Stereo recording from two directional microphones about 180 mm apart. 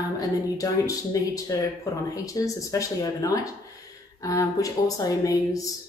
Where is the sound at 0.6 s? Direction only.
20° left (ahead or behind).